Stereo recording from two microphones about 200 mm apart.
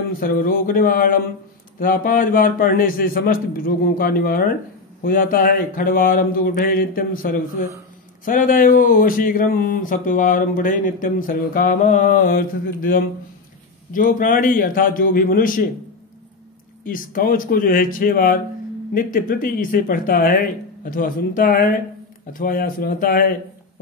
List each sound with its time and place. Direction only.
0.2 s speech: 45° left (ahead or behind)
16.8 s speech: 45° left (ahead or behind)